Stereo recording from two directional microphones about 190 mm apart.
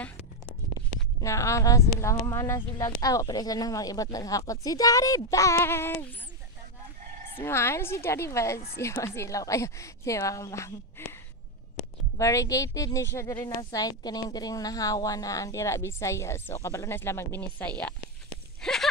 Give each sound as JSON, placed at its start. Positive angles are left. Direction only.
{"t": 0.7, "sound": "speech", "side_deg": 15}
{"t": 7.3, "sound": "speech", "side_deg": 15}
{"t": 12.2, "sound": "speech", "side_deg": 15}
{"t": 18.6, "sound": "a sound", "side_deg": 0}